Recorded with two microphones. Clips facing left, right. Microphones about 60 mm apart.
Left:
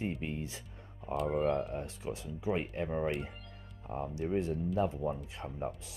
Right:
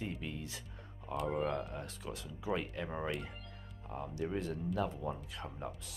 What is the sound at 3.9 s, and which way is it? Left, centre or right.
Speech, left.